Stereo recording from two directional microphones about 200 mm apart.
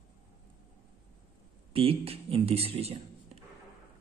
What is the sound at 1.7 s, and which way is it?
A woman's voice, 30° right (ahead or behind).